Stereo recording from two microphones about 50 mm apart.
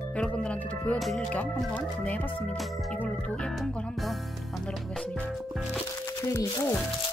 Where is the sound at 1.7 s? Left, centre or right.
Left.